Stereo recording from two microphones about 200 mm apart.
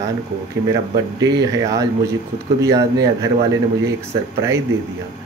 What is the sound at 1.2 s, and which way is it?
Speech, 20° right (ahead or behind).